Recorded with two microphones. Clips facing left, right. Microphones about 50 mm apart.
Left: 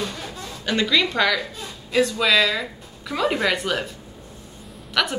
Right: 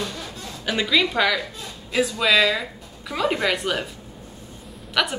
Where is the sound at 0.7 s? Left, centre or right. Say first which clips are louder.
Even; centre.